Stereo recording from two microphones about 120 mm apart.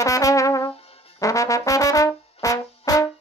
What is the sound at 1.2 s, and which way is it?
Brass instrument, 25° left (ahead or behind).